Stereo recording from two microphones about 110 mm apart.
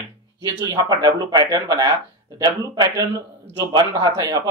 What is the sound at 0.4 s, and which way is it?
Speech, 35° right (ahead or behind).